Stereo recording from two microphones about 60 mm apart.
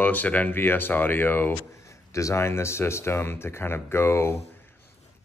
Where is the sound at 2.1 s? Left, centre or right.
Left.